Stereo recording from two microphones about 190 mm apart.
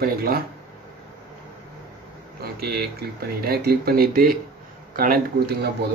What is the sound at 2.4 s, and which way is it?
Speech, 55° right (ahead or behind).